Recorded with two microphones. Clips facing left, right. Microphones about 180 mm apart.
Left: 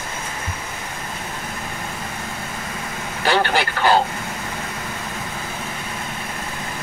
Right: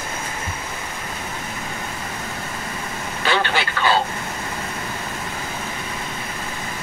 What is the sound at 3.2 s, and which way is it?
Vehicle, 45° left (ahead or behind).